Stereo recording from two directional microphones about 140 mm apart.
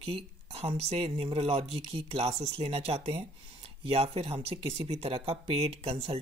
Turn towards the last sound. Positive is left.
turn(degrees=-40)  # may be behind; listen again after turning